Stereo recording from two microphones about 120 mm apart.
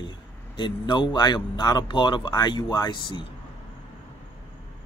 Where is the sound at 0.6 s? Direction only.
40° left (ahead or behind).